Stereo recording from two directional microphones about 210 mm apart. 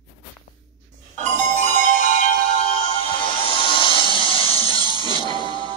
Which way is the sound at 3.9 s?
20° right (ahead or behind).